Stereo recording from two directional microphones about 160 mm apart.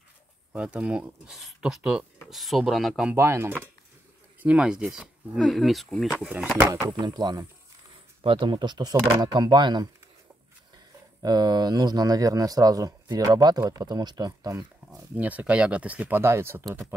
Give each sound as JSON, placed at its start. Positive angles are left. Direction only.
{"t": 0.5, "sound": "speech", "side_deg": -5}
{"t": 3.2, "sound": "speech", "side_deg": -15}
{"t": 4.4, "sound": "speech", "side_deg": -5}
{"t": 6.7, "sound": "speech", "side_deg": -25}
{"t": 11.2, "sound": "speech", "side_deg": -25}
{"t": 14.9, "sound": "speech", "side_deg": -10}